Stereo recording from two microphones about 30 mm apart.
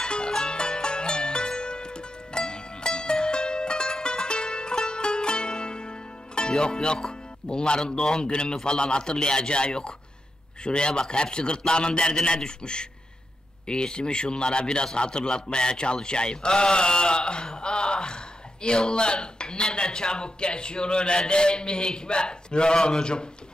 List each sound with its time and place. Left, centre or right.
0.0 s music: left
6.6 s a man's voice: left